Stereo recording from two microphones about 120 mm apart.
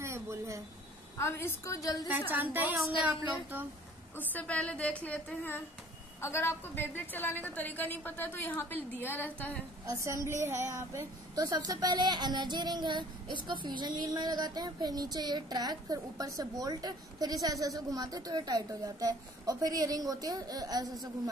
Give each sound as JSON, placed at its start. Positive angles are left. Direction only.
{"t": 0.0, "sound": "a sound", "side_deg": -25}
{"t": 1.1, "sound": "a woman's voice", "side_deg": 20}
{"t": 2.0, "sound": "a woman's voice", "side_deg": -15}
{"t": 4.2, "sound": "a woman's voice", "side_deg": 15}
{"t": 9.8, "sound": "a woman's voice", "side_deg": -25}